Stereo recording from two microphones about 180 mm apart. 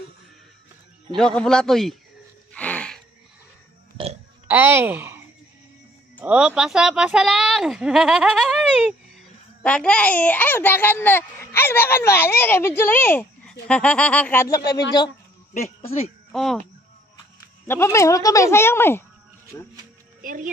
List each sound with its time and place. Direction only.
1.1 s a man's voice: 5° left (ahead or behind)
2.5 s a sound: 5° left (ahead or behind)
4.5 s a woman's voice: 10° right (ahead or behind); by 14.6 s 15° left (ahead or behind)
16.3 s speech: centre (ahead or behind)
17.6 s speech: 15° left (ahead or behind)
20.2 s speech: 50° right (ahead or behind)